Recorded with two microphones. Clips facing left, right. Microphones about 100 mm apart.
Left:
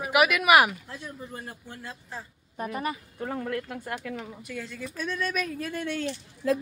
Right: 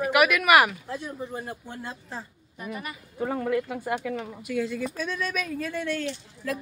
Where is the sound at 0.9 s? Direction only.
20° right (ahead or behind).